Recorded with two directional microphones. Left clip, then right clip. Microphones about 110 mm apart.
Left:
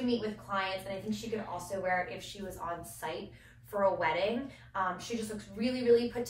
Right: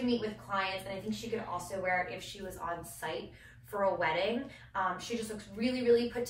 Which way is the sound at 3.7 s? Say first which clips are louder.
Left 1 dB; 15° left (ahead or behind).